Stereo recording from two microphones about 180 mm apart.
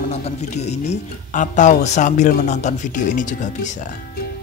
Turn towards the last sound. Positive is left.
turn(degrees=45)  # may be behind; listen again after turning